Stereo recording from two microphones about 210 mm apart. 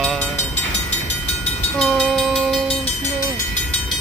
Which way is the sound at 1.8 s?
Centre (ahead or behind).